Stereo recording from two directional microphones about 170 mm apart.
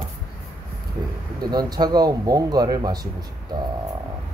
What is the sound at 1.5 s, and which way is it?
Speech, 25° right (ahead or behind).